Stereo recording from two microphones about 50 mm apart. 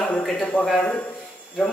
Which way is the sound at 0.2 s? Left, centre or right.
Centre.